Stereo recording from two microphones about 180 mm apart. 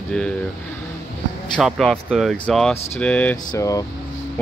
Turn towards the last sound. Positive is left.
turn(degrees=20)  # may be behind; listen again after turning